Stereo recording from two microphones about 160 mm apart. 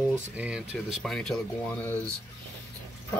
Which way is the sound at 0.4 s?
5° right (ahead or behind).